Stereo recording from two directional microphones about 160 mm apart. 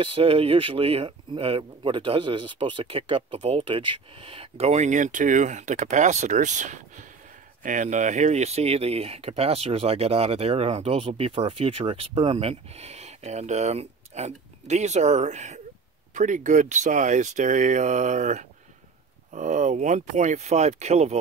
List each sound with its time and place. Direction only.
0.0 s speech: 35° right (ahead or behind)